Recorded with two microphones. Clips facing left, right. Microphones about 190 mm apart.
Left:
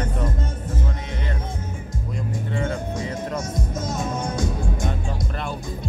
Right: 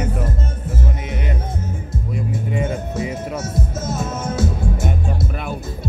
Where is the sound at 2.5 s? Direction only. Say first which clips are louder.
Right 2 dB; 20° right (ahead or behind).